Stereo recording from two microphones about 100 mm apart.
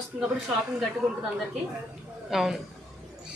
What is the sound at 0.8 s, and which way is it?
A woman's voice, centre (ahead or behind).